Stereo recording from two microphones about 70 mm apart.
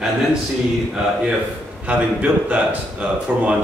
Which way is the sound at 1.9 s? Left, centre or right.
Centre.